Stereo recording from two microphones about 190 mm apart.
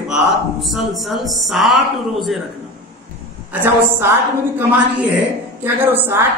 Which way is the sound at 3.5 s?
10° right (ahead or behind).